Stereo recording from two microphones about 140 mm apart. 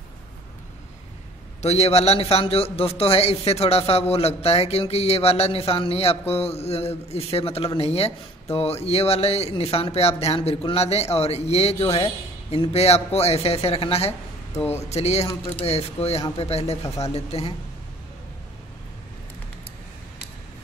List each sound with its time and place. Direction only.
1.6 s a man's voice: 50° left (ahead or behind)